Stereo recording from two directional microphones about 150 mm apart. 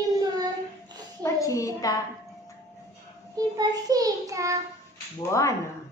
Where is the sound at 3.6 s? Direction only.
25° right (ahead or behind).